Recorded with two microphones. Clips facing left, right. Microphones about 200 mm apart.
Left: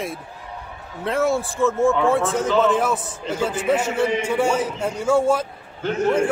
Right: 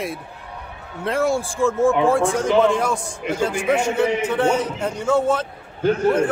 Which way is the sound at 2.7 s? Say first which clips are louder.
Left 1 dB; 5° left (ahead or behind).